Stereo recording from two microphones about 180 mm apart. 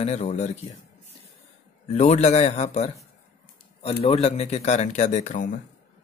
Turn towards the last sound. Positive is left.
turn(degrees=45)  # may be behind; listen again after turning